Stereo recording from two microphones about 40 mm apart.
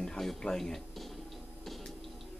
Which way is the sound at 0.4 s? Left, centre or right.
Centre.